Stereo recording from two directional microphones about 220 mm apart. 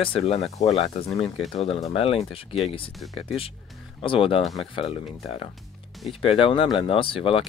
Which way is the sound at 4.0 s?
25° left (ahead or behind).